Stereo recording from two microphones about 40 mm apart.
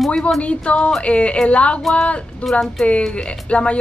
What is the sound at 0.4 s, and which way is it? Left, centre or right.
Speech, left.